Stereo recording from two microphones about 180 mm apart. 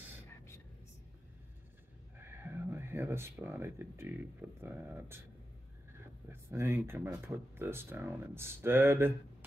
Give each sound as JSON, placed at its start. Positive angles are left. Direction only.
{"t": 2.1, "sound": "speech", "side_deg": -10}
{"t": 6.2, "sound": "speech", "side_deg": -15}